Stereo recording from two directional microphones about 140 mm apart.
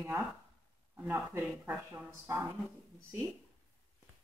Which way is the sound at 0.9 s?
15° right (ahead or behind).